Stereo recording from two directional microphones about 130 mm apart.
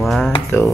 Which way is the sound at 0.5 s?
15° left (ahead or behind).